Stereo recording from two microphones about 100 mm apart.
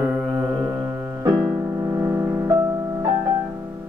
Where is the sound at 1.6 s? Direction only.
30° right (ahead or behind).